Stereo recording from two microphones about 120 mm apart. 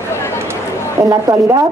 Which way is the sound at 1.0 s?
25° right (ahead or behind).